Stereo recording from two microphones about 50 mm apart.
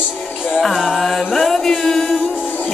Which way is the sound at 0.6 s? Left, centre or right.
Centre.